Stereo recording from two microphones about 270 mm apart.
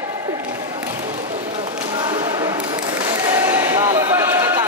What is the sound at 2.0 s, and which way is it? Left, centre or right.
Whip, centre.